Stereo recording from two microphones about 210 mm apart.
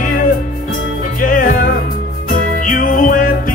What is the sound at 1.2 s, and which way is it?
Music, 40° left (ahead or behind).